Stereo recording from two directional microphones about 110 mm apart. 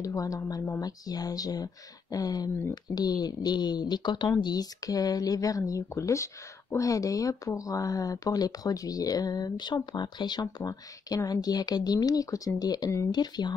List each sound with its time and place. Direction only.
0.0 s speech: 30° left (ahead or behind)